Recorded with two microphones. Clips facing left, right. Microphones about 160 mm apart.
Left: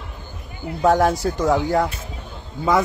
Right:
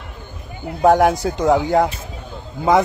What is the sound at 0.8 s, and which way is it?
Speech, 15° right (ahead or behind).